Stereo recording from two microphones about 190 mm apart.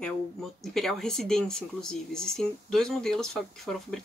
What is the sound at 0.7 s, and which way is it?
Speech, centre (ahead or behind).